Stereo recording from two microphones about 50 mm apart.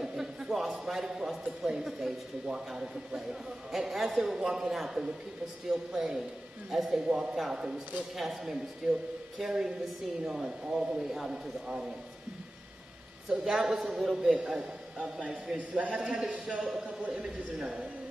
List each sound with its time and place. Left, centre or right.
0.0 s a man's voice: centre
7.0 s a man's voice: centre
13.3 s a man's voice: centre
14.5 s a man's voice: right
16.1 s a man's voice: centre